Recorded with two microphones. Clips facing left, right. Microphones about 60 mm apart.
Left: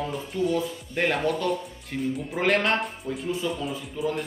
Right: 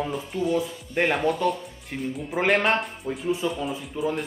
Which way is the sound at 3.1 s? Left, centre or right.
Right.